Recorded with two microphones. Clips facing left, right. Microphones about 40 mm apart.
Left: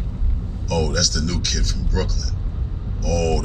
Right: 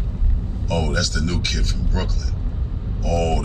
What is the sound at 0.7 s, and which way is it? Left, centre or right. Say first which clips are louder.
A man's voice: left 1 dB; right.